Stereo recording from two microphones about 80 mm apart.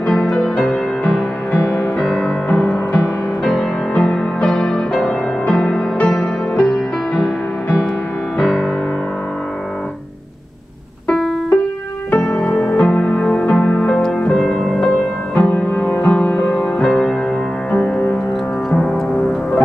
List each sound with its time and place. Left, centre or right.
0.0 s music: centre
0.6 s music: centre
8.4 s music: centre
12.1 s music: centre